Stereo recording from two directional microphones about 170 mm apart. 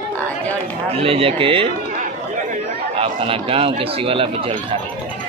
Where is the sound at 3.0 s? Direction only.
30° right (ahead or behind).